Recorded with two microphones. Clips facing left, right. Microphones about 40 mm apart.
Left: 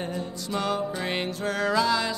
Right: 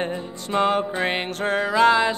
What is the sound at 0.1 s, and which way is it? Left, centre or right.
Music, right.